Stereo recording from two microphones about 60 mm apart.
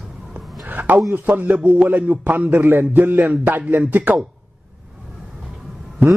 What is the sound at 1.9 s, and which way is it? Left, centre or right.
Music, right.